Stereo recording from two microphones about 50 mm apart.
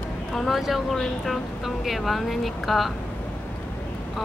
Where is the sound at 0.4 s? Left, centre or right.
Centre.